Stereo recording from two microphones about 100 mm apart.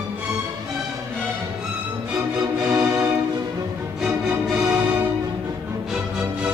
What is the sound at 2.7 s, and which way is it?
Music, 30° right (ahead or behind).